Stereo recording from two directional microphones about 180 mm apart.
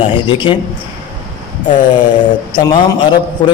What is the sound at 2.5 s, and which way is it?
A man's voice, 20° left (ahead or behind).